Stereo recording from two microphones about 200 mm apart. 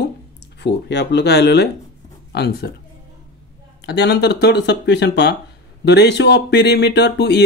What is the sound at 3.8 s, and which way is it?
Speech, 55° left (ahead or behind).